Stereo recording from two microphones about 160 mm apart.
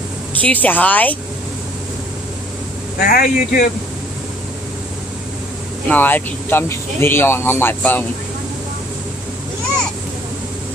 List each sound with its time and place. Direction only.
0.4 s speech: 10° left (ahead or behind)
3.0 s speech: 65° left (ahead or behind)
5.9 s speech: 10° left (ahead or behind)